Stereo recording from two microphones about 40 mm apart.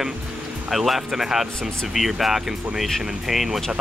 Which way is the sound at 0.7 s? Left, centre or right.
Centre.